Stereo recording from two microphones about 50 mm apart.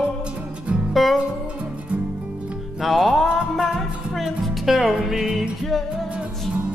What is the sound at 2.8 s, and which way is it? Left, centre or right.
Music, centre.